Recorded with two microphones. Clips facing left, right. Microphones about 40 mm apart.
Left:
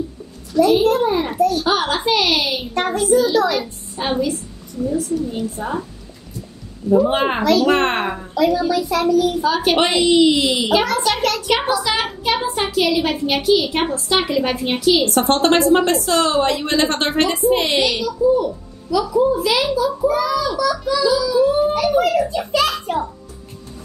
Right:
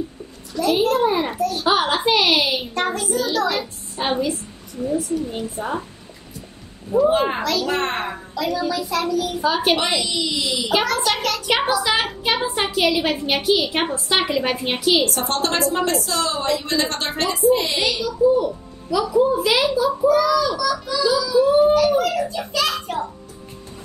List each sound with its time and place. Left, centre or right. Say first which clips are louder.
0.6 s a child's voice: left 4 dB; centre
3.0 s a child's voice: left 6 dB; centre
4.0 s a woman's voice: left 1 dB; right
7.1 s a woman's voice: left 3 dB; left
8.4 s a child's voice: left 6 dB; centre
9.5 s speech: left 1 dB; centre
9.8 s a woman's voice: left 8 dB; left
10.7 s a child's voice: right 1 dB; centre
11.4 s speech: left 1 dB; centre
15.0 s a woman's voice: left 7 dB; left
18.2 s a child's voice: even; right
19.4 s speech: left 1 dB; centre
20.0 s a child's voice: right 1 dB; centre
21.7 s a child's voice: left 1 dB; centre